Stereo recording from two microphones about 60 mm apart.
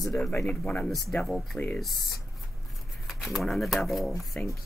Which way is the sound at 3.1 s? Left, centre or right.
Centre.